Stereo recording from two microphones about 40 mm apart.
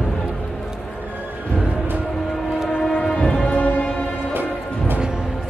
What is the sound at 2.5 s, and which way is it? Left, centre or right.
Train, centre.